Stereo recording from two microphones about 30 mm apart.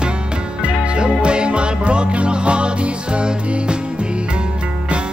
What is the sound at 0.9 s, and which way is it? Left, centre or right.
Music, right.